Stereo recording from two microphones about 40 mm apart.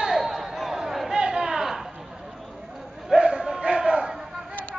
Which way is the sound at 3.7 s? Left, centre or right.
Right.